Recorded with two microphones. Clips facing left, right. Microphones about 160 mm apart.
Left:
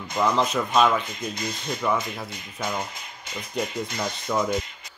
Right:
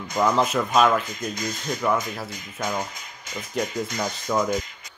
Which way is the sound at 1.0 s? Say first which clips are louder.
Right 1 dB; 25° left (ahead or behind).